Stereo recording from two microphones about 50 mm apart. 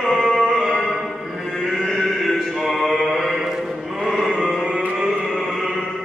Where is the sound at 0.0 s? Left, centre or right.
Centre.